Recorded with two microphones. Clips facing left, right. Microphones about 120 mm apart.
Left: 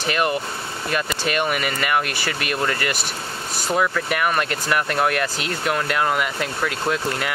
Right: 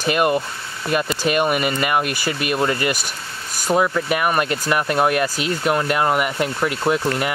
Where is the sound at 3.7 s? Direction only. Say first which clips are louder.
Right 3 dB; 15° right (ahead or behind).